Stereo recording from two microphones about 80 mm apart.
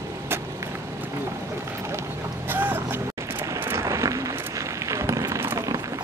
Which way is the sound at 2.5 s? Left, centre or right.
Right.